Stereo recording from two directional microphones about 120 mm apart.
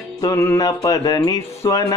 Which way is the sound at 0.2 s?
25° left (ahead or behind).